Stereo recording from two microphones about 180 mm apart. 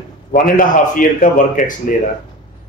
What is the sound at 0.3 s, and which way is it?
Speech, 50° left (ahead or behind).